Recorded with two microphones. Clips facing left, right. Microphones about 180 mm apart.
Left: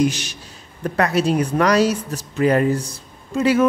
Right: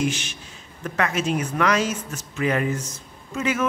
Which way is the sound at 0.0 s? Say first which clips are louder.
Left 6 dB; 40° left (ahead or behind).